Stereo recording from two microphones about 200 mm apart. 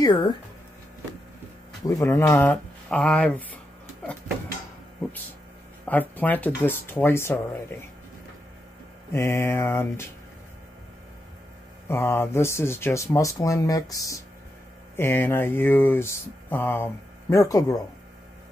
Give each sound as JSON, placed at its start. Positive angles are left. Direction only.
{"t": 0.0, "sound": "speech", "side_deg": 20}
{"t": 1.9, "sound": "speech", "side_deg": 15}
{"t": 5.9, "sound": "speech", "side_deg": 10}
{"t": 9.1, "sound": "speech", "side_deg": 10}
{"t": 11.9, "sound": "speech", "side_deg": 10}